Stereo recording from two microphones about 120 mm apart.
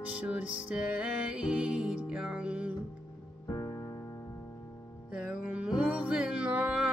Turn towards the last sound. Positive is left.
turn(degrees=-10)  # may be behind; listen again after turning